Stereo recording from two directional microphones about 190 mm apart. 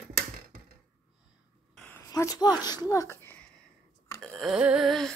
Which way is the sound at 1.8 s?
15° left (ahead or behind).